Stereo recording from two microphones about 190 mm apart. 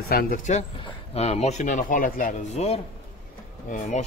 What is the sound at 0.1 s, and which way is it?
Speech, 50° left (ahead or behind).